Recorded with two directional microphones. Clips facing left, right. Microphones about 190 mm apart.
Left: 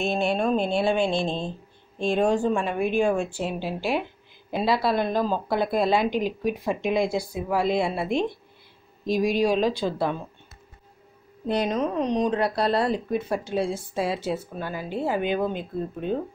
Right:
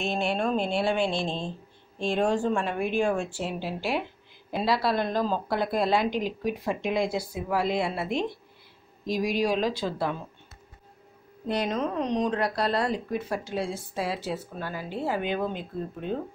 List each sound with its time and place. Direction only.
0.3 s speech: 15° left (ahead or behind)
11.4 s speech: 20° left (ahead or behind)